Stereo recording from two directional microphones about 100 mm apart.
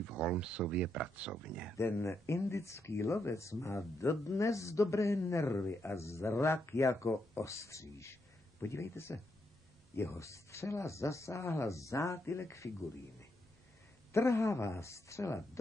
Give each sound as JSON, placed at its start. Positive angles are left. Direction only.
{"t": 0.1, "sound": "speech", "side_deg": -5}
{"t": 1.8, "sound": "speech", "side_deg": 25}
{"t": 14.1, "sound": "speech", "side_deg": 30}